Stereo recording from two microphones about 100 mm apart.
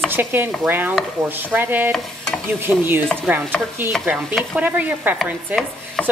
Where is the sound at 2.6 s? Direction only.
20° right (ahead or behind).